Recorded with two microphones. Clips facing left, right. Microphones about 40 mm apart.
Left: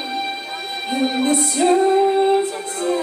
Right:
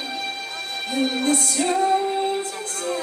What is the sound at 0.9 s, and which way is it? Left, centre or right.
Music, centre.